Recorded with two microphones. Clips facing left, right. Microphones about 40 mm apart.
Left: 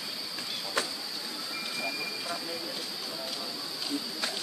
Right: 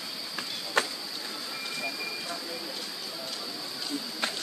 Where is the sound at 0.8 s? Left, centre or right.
Right.